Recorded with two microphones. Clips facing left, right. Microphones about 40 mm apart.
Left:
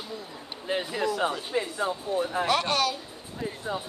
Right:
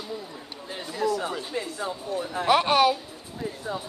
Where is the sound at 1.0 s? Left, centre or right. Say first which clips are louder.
Right 5 dB; left.